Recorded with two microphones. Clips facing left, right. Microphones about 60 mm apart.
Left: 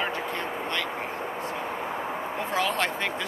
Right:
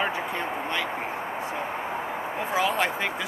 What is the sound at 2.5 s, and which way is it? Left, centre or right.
Speech, centre.